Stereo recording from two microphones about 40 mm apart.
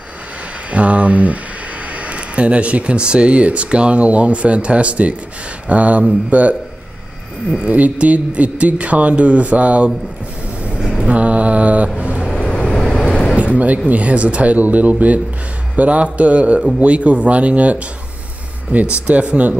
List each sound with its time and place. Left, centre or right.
0.7 s speech: right
7.6 s speech: right
11.0 s mantra: right
12.4 s vehicle: left
13.4 s speech: right